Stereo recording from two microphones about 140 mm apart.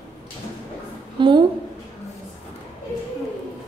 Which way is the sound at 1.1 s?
35° right (ahead or behind).